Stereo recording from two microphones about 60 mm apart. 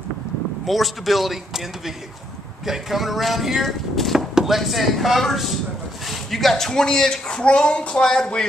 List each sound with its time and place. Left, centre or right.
0.7 s speech: centre
2.6 s speech: centre